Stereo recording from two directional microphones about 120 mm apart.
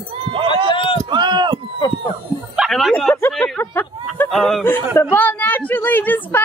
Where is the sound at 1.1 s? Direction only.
40° right (ahead or behind).